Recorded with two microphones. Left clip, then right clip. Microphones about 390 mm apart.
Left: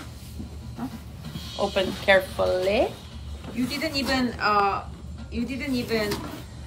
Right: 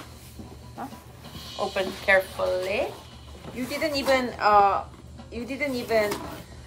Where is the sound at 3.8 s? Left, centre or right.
Centre.